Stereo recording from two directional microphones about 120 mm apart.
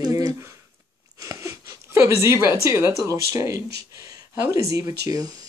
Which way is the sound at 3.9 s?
30° right (ahead or behind).